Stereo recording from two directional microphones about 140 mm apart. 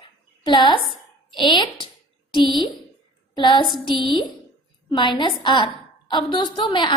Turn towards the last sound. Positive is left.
turn(degrees=35)  # may be behind; listen again after turning